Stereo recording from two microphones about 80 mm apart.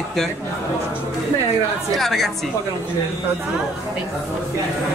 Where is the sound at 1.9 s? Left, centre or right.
Centre.